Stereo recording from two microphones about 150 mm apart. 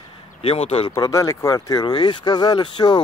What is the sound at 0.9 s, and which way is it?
Speech, 20° left (ahead or behind).